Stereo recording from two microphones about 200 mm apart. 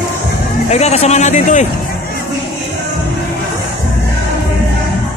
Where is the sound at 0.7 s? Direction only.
30° left (ahead or behind).